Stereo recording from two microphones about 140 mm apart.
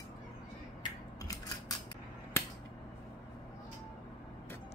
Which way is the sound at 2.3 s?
20° left (ahead or behind).